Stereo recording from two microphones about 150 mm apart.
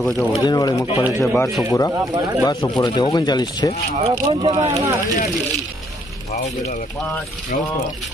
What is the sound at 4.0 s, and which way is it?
Speech, 35° right (ahead or behind).